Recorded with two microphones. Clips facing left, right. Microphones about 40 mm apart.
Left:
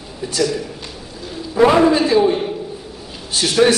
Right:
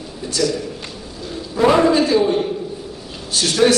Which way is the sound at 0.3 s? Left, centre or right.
Centre.